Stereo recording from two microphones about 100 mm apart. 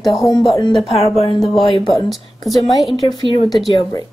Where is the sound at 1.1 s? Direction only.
70° left (ahead or behind).